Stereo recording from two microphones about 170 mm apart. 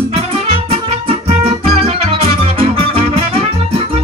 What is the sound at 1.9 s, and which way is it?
Music, 35° right (ahead or behind).